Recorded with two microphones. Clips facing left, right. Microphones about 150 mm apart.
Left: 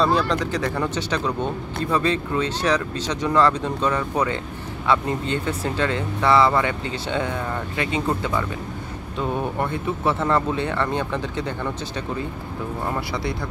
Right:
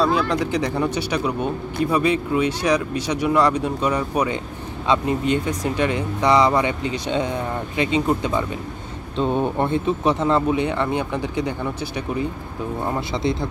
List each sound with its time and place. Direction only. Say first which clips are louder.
0.0 s speech: right 1 dB; 5° right (ahead or behind)
13.1 s speech: right 4 dB; 20° right (ahead or behind)